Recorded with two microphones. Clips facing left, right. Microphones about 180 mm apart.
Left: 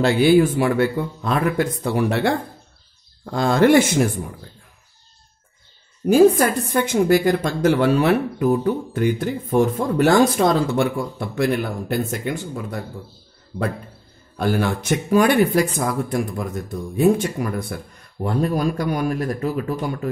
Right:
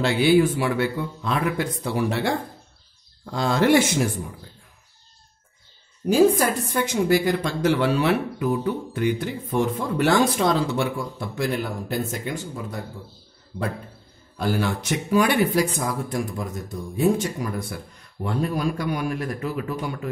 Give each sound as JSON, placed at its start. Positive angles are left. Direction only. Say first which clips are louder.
{"t": 0.0, "sound": "a woman's voice", "louder": "left 3 dB", "side_deg": 45}
{"t": 6.0, "sound": "a woman's voice", "louder": "left 4 dB", "side_deg": 55}
{"t": 14.3, "sound": "speech", "louder": "left 3 dB", "side_deg": 55}
{"t": 18.2, "sound": "a woman's voice", "louder": "left 4 dB", "side_deg": 40}